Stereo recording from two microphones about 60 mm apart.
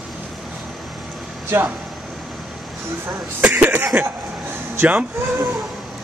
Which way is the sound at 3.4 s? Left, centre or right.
Right.